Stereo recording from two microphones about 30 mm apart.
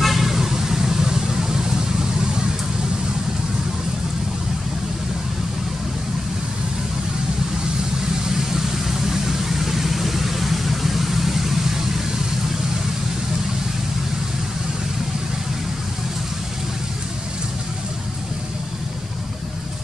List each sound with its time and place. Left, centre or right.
0.0 s vehicle: centre
8.3 s vehicle: centre